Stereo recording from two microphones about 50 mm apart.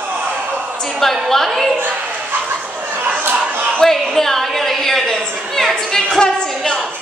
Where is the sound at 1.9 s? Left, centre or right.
Right.